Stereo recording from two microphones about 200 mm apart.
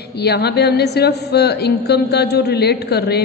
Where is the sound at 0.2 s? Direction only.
55° left (ahead or behind).